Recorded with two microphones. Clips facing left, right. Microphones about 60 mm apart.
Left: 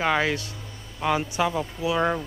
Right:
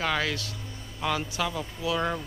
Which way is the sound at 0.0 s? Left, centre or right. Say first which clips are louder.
Left 5 dB; left.